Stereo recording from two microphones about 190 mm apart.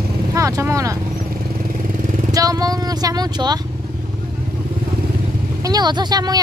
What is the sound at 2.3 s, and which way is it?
Vehicle, 20° right (ahead or behind).